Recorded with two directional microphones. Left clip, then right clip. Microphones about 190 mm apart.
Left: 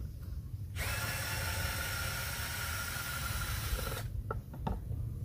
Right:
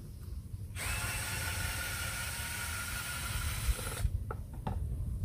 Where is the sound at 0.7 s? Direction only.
10° left (ahead or behind).